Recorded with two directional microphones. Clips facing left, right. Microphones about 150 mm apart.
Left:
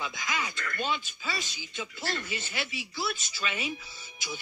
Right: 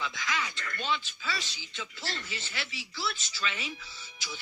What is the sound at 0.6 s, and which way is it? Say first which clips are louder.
Speech: left 1 dB; 50° left (ahead or behind).